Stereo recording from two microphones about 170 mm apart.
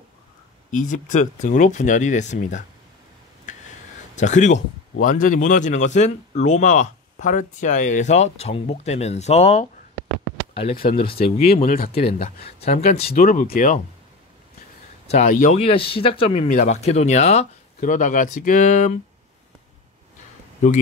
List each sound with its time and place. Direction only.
0.7 s speech: 50° left (ahead or behind)
4.1 s speech: 45° left (ahead or behind)
10.5 s a sound: 35° left (ahead or behind)
10.9 s speech: 30° left (ahead or behind)
11.4 s speech: 60° left (ahead or behind)
11.9 s speech: 35° left (ahead or behind)
13.1 s speech: 55° left (ahead or behind)
15.0 s speech: 40° left (ahead or behind)
15.6 s speech: 30° left (ahead or behind)